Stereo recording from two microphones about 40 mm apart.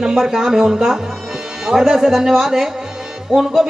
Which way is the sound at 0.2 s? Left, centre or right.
Centre.